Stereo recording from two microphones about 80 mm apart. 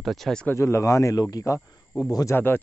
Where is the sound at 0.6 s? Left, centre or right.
Left.